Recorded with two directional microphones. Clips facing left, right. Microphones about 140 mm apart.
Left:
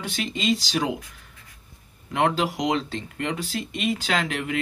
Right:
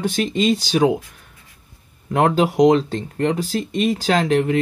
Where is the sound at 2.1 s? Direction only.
45° right (ahead or behind).